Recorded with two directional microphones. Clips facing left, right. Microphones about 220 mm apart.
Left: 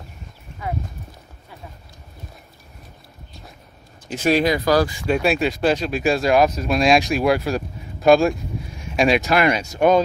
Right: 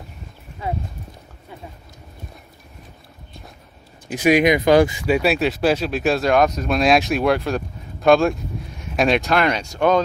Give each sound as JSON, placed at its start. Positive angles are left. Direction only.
{"t": 4.1, "sound": "speech", "side_deg": -10}
{"t": 5.0, "sound": "speech", "side_deg": -5}